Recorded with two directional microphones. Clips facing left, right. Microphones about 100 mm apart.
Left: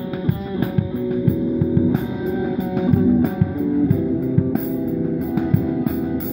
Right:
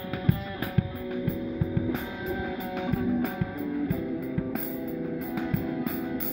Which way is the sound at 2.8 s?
15° left (ahead or behind).